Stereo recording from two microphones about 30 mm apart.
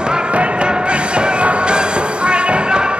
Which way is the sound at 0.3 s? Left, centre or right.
Right.